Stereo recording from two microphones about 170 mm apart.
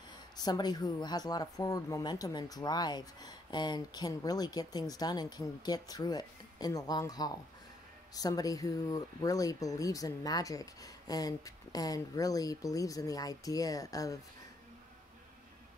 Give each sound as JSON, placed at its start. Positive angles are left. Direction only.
{"t": 0.4, "sound": "speech", "side_deg": 25}